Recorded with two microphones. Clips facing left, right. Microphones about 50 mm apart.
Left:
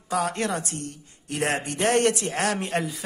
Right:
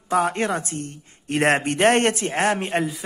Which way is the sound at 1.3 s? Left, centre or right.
Right.